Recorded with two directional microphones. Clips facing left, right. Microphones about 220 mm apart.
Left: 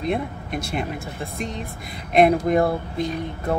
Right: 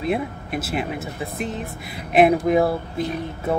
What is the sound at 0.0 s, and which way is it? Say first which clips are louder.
Speech: right 1 dB; 5° right (ahead or behind).